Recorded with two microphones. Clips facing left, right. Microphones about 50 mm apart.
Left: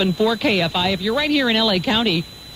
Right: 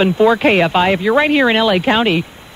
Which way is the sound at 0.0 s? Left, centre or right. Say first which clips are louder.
Right 7 dB; right.